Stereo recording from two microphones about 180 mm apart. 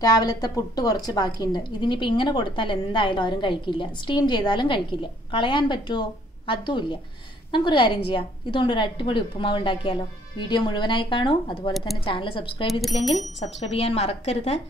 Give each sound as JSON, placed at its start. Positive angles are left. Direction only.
{"t": 0.0, "sound": "a woman's voice", "side_deg": 20}